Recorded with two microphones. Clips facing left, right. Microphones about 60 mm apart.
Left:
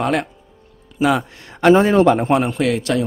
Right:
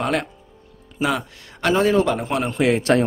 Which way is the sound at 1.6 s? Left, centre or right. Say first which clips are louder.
Left 6 dB; left.